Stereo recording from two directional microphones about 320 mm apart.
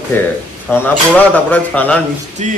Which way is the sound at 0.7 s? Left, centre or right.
Centre.